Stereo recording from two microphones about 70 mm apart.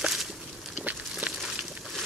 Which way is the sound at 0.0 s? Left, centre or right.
Centre.